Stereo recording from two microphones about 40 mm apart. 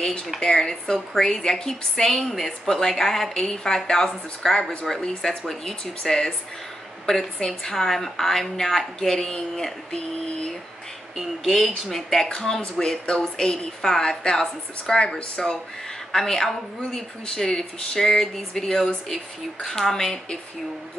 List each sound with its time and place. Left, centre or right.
0.4 s a woman's voice: centre
11.1 s a woman's voice: centre; by 13.5 s left
13.8 s a woman's voice: centre; by 15.5 s left
16.1 s a woman's voice: centre